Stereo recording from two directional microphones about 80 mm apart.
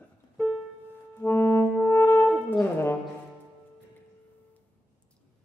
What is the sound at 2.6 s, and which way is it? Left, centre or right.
Speech, left.